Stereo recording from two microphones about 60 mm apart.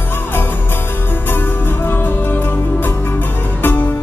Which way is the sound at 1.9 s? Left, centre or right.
Left.